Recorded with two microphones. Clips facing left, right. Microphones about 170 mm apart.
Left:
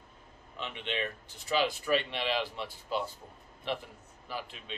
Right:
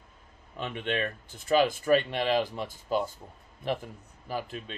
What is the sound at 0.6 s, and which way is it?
Speech, 50° right (ahead or behind).